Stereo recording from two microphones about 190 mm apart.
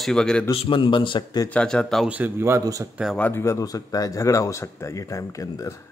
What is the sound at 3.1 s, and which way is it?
Speech, 10° left (ahead or behind).